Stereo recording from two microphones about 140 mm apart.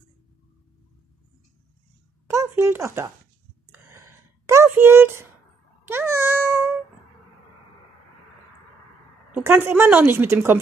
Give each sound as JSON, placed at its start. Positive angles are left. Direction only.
{"t": 2.3, "sound": "speech", "side_deg": -15}
{"t": 4.5, "sound": "speech", "side_deg": -15}
{"t": 5.9, "sound": "meow", "side_deg": -15}
{"t": 9.3, "sound": "a woman's voice", "side_deg": -15}